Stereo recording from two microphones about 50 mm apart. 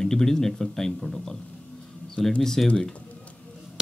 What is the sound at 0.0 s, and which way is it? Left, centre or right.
Speech, centre.